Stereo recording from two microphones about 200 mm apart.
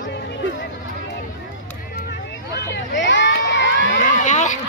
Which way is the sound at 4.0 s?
40° left (ahead or behind).